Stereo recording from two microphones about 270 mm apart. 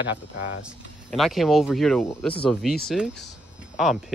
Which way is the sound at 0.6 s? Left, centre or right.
Centre.